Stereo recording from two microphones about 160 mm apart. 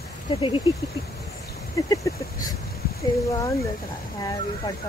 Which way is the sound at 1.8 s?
20° left (ahead or behind).